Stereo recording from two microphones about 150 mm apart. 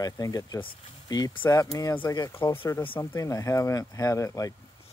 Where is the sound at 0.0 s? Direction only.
25° left (ahead or behind).